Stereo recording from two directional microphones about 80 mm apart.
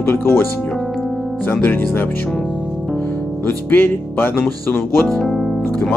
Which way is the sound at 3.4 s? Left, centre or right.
Left.